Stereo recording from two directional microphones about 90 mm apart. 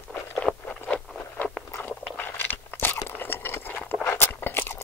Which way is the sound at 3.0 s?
25° left (ahead or behind).